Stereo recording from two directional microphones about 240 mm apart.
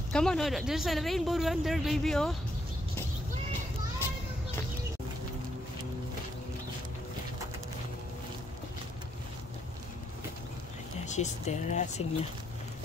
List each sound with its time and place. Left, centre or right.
0.1 s speech: centre
11.1 s speech: left